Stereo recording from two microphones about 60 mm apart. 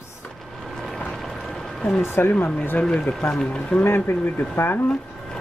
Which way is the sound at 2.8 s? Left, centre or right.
Centre.